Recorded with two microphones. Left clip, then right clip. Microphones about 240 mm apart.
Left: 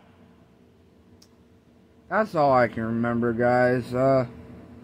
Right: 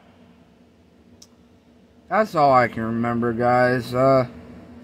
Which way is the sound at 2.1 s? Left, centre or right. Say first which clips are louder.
Right 4 dB; centre.